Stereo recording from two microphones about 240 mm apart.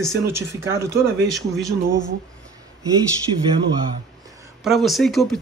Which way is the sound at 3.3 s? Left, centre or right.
Right.